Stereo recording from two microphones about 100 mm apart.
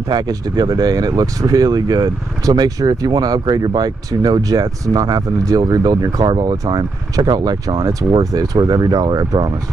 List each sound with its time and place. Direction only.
0.1 s speech: 45° right (ahead or behind)